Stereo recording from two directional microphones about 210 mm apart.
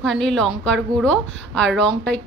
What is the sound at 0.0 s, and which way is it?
A woman's voice, 5° left (ahead or behind).